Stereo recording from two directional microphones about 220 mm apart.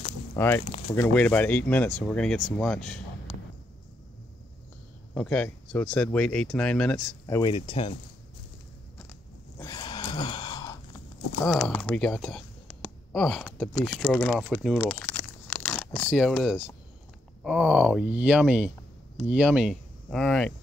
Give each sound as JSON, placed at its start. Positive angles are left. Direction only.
{"t": 0.4, "sound": "speech", "side_deg": 10}
{"t": 5.1, "sound": "speech", "side_deg": 5}
{"t": 7.5, "sound": "speech", "side_deg": 25}
{"t": 9.6, "sound": "a sound", "side_deg": 20}
{"t": 11.4, "sound": "speech", "side_deg": 5}
{"t": 14.9, "sound": "crumpling", "side_deg": 10}
{"t": 16.1, "sound": "speech", "side_deg": 0}